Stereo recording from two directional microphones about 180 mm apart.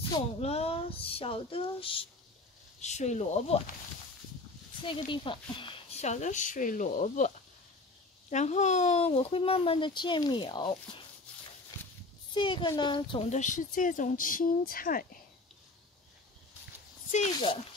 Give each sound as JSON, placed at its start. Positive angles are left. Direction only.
{"t": 0.1, "sound": "speech", "side_deg": 35}
{"t": 4.8, "sound": "speech", "side_deg": 30}
{"t": 12.4, "sound": "speech", "side_deg": 25}